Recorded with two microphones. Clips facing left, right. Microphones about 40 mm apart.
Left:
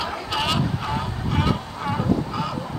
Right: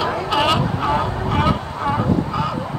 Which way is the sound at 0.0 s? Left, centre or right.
Centre.